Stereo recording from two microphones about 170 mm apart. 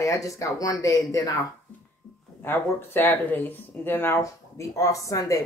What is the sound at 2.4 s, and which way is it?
Speech, 15° left (ahead or behind).